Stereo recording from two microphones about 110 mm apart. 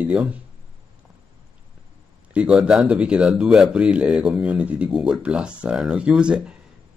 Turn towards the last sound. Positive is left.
turn(degrees=-10)  # may be behind; listen again after turning